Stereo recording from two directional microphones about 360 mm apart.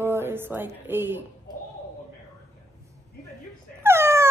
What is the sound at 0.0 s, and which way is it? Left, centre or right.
A woman's voice, centre.